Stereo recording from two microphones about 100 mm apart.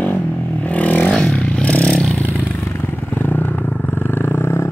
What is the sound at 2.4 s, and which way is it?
Vehicle, 20° left (ahead or behind).